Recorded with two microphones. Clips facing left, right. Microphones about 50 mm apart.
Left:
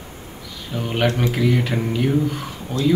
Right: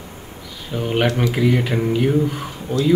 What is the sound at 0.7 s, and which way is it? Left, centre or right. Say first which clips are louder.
Speech: right 2 dB; centre.